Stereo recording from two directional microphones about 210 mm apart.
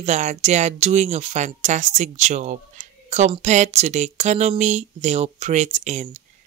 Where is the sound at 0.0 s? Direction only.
35° right (ahead or behind).